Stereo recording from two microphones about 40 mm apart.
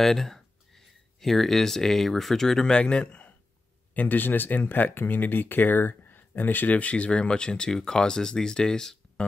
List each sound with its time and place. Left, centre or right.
0.0 s speech: centre
2.7 s a man's voice: left
3.9 s speech: left
6.8 s speech: left
7.1 s speech: left